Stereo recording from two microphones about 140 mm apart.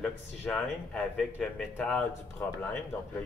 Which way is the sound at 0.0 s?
5° left (ahead or behind).